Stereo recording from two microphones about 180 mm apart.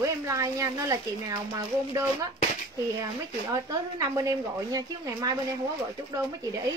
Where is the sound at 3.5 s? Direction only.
20° right (ahead or behind).